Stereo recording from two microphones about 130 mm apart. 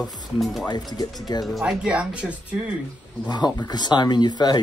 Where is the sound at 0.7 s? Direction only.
30° left (ahead or behind).